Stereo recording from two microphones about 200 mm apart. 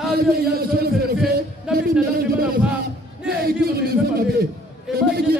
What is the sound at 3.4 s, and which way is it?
A man's voice, 50° right (ahead or behind).